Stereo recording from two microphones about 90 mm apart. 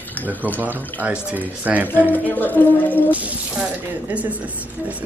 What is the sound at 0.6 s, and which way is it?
Speech, 20° right (ahead or behind).